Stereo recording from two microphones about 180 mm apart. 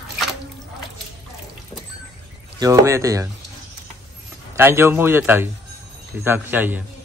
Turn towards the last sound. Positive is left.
turn(degrees=-10)  # may be behind; listen again after turning